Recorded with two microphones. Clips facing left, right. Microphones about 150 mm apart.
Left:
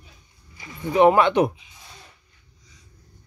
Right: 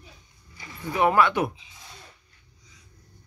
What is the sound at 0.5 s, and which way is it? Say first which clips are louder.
Speech: left 7 dB; 20° left (ahead or behind).